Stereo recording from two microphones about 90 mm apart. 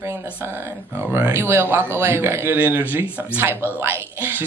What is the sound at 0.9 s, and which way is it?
Speech, 25° right (ahead or behind).